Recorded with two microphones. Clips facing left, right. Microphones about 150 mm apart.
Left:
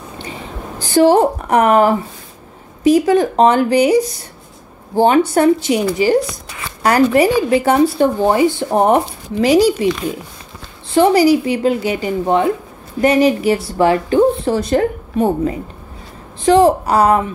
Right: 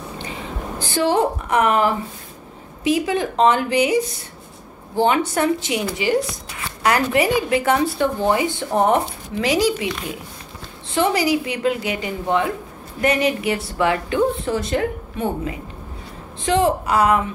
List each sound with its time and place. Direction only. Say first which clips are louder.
0.7 s speech: left 8 dB; 40° left (ahead or behind)
11.0 s speech: left 8 dB; 35° left (ahead or behind)